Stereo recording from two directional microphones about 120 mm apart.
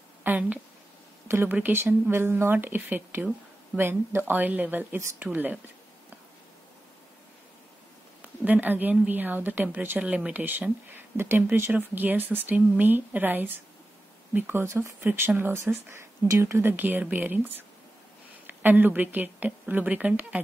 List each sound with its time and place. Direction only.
0.2 s a sound: 15° right (ahead or behind)
1.2 s a woman's voice: 20° right (ahead or behind)
8.2 s a woman's voice: 15° right (ahead or behind)